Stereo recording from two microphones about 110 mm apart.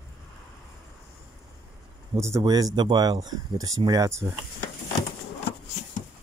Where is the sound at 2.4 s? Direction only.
35° right (ahead or behind).